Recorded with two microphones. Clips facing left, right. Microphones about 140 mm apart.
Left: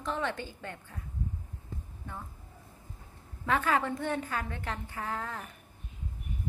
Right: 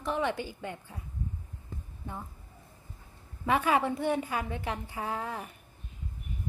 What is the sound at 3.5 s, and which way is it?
A woman's voice, 15° right (ahead or behind).